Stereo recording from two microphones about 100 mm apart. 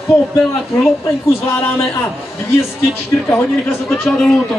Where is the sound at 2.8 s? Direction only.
25° left (ahead or behind).